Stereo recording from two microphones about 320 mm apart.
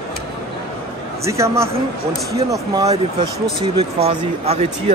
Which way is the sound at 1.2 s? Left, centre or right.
Centre.